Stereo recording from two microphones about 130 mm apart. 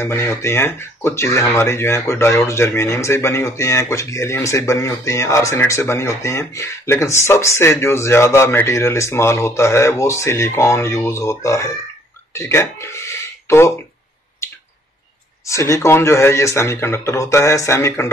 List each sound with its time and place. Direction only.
0.0 s speech: 20° left (ahead or behind)
15.4 s speech: 25° left (ahead or behind)